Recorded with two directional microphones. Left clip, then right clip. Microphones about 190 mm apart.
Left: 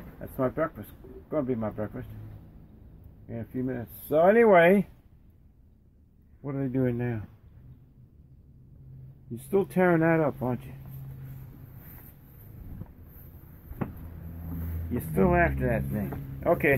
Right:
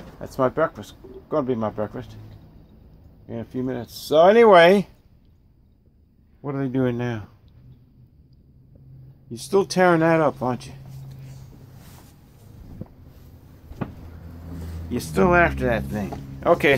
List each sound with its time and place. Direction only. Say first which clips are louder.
0.4 s speech: right 7 dB; 20° right (ahead or behind)
3.3 s speech: right 5 dB; 15° right (ahead or behind)
6.4 s speech: right 5 dB; 15° right (ahead or behind)
9.3 s speech: right 6 dB; 15° right (ahead or behind)
14.9 s speech: right 6 dB; 10° right (ahead or behind)